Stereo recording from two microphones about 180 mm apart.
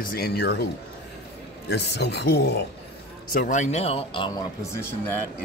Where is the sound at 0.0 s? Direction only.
55° left (ahead or behind).